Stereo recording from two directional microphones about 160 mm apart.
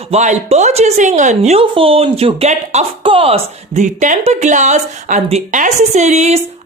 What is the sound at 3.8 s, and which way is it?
Speech, 50° right (ahead or behind).